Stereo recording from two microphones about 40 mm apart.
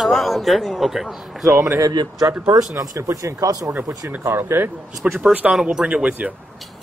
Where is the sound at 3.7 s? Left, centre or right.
Right.